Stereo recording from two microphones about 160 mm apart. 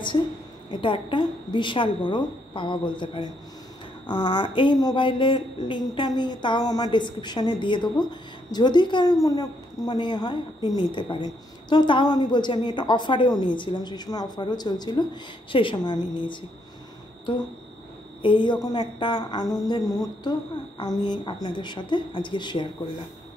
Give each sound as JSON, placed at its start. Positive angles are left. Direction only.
{"t": 0.7, "sound": "speech", "side_deg": 30}
{"t": 18.2, "sound": "speech", "side_deg": 30}